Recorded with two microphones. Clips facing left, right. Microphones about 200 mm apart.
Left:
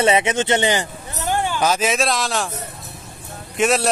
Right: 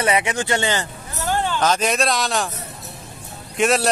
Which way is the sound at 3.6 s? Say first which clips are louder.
Even; centre (ahead or behind).